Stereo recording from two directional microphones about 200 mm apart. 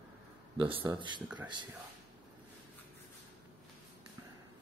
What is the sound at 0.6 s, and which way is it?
Speech, 25° right (ahead or behind).